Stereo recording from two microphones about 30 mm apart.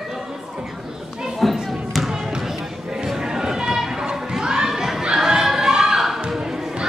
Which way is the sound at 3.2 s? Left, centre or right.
Right.